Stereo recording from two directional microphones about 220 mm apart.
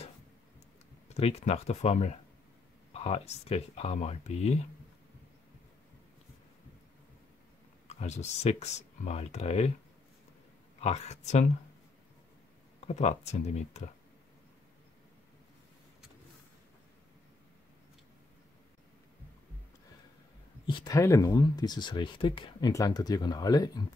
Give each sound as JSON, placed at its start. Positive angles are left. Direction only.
{"t": 1.0, "sound": "speech", "side_deg": 30}
{"t": 7.9, "sound": "speech", "side_deg": 30}
{"t": 10.8, "sound": "speech", "side_deg": 30}
{"t": 12.8, "sound": "speech", "side_deg": 30}
{"t": 20.6, "sound": "speech", "side_deg": 20}